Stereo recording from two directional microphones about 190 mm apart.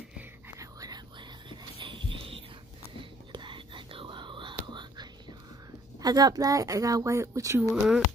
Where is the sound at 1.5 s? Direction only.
25° right (ahead or behind).